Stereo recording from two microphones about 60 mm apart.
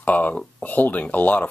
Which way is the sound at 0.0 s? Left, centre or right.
Left.